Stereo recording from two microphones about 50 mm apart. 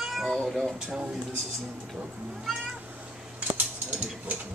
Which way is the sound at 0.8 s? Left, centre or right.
Centre.